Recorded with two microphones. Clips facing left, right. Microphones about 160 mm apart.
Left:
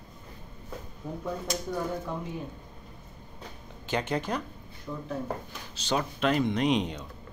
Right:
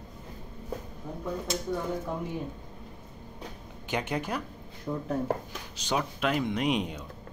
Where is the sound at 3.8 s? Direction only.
15° right (ahead or behind).